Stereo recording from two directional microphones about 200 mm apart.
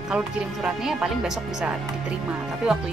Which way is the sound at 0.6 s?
5° right (ahead or behind).